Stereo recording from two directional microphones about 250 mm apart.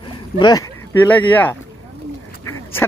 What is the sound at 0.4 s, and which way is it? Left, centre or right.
Speech, centre.